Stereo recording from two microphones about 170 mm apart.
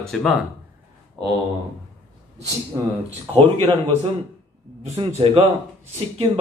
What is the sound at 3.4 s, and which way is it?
Speech, 35° right (ahead or behind).